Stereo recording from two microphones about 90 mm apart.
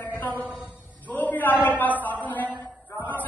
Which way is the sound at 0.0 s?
20° left (ahead or behind).